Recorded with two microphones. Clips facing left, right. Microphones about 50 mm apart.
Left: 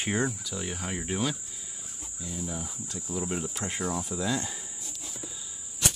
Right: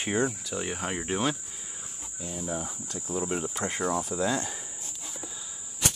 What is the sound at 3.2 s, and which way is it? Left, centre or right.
Cricket, centre.